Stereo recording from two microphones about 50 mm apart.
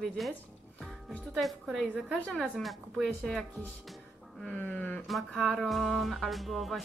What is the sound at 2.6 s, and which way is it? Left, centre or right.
Music, centre.